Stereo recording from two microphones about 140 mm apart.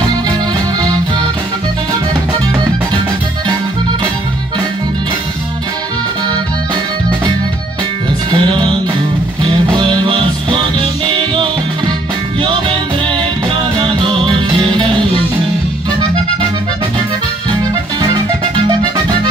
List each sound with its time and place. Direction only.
8.3 s music: 35° right (ahead or behind)
14.5 s music: 40° right (ahead or behind)